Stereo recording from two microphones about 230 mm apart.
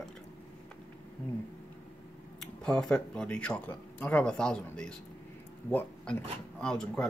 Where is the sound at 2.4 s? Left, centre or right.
Centre.